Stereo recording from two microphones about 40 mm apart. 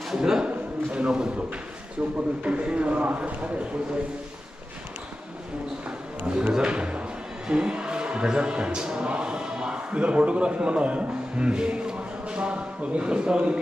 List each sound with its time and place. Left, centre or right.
0.2 s a man's voice: centre; by 3.6 s right
5.9 s a sound: right
6.5 s a man's voice: right